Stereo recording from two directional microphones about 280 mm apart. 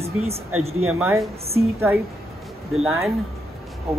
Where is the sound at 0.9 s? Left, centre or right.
Centre.